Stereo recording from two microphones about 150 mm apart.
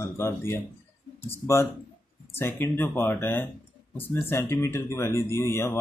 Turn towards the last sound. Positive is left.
turn(degrees=15)  # may be behind; listen again after turning